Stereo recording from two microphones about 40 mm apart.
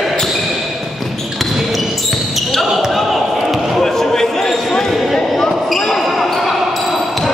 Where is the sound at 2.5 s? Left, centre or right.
Centre.